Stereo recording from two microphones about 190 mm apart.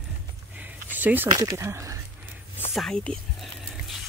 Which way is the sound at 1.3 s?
20° right (ahead or behind).